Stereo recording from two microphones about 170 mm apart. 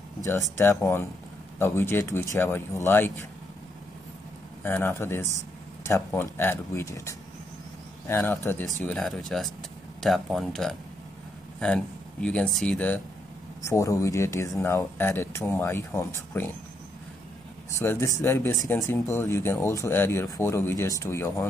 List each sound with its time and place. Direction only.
0.2 s speech: 15° left (ahead or behind)
4.6 s speech: 15° left (ahead or behind)
17.7 s speech: 20° left (ahead or behind)